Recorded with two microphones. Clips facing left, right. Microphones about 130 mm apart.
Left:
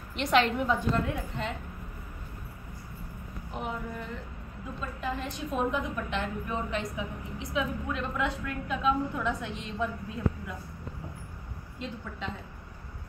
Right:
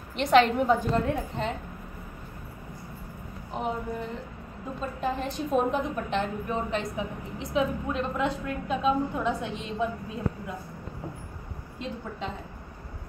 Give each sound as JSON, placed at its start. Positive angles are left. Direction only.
{"t": 0.1, "sound": "a woman's voice", "side_deg": -35}
{"t": 3.5, "sound": "a woman's voice", "side_deg": -30}